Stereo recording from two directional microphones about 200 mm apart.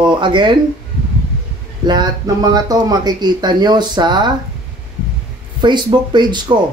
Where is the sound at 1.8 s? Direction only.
20° right (ahead or behind).